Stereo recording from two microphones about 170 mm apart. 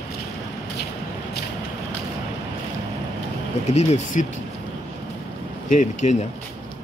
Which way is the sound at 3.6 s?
40° left (ahead or behind).